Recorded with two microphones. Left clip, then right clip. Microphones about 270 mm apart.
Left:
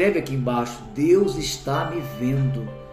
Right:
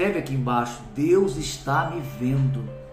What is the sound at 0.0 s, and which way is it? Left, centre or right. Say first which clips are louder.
A man's voice: left 4 dB; centre.